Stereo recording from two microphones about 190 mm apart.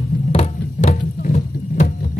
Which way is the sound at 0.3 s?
35° left (ahead or behind).